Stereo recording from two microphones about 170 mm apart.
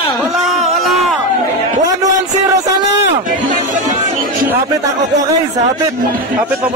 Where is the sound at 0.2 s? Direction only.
Centre (ahead or behind).